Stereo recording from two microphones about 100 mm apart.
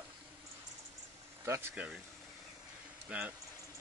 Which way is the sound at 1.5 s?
25° right (ahead or behind).